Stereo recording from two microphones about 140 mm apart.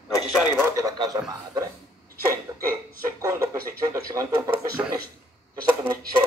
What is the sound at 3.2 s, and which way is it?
Speech, 20° right (ahead or behind).